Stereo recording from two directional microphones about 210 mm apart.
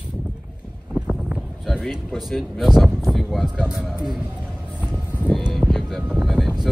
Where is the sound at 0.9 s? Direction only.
5° right (ahead or behind).